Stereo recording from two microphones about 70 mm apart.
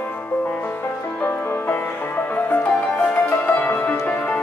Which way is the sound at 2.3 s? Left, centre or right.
Left.